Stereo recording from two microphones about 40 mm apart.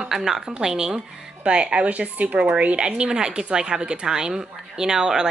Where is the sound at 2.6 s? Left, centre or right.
Right.